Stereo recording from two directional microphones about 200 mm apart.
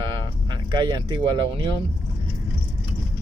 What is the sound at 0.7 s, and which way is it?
Speech, 25° right (ahead or behind).